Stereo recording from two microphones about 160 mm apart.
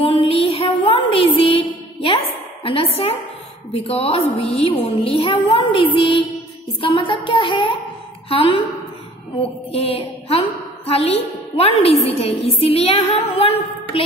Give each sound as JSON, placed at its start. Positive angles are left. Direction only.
{"t": 0.0, "sound": "music", "side_deg": 35}
{"t": 2.6, "sound": "a woman's voice", "side_deg": 35}
{"t": 9.4, "sound": "mantra", "side_deg": 40}
{"t": 10.9, "sound": "a woman's voice", "side_deg": 40}